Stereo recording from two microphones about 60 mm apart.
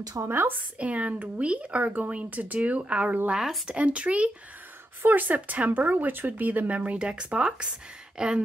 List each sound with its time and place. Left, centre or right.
0.0 s a woman's voice: right
0.3 s a woman's voice: right
0.7 s speech: right